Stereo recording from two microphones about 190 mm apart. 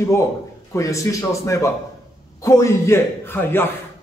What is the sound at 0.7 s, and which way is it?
A man's voice, 15° left (ahead or behind).